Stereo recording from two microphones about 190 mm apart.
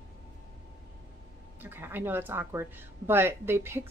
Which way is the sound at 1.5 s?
10° right (ahead or behind).